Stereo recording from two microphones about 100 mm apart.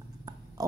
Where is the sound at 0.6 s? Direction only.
40° right (ahead or behind).